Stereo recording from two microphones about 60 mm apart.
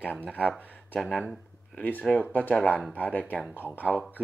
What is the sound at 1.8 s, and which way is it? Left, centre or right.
Speech, left.